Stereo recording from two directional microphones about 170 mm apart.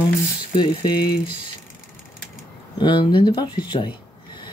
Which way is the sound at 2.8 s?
25° left (ahead or behind).